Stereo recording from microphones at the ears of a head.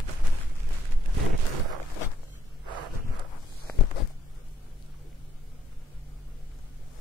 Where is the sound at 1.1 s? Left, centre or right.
Right.